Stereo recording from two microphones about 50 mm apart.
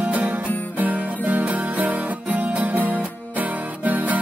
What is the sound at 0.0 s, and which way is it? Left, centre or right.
Music, right.